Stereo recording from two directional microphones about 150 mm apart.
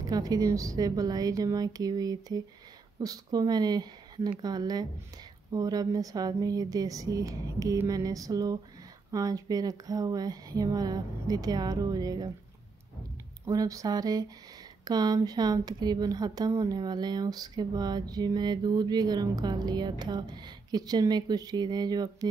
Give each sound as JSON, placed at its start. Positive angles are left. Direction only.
{"t": 0.0, "sound": "a woman's voice", "side_deg": -25}
{"t": 13.5, "sound": "a woman's voice", "side_deg": -25}